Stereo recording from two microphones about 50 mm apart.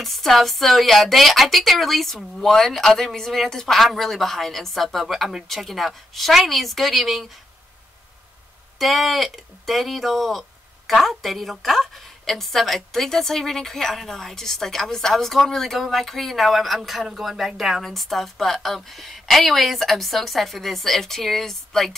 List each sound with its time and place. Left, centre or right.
0.0 s a woman's voice: centre
8.7 s a woman's voice: centre
17.8 s a woman's voice: centre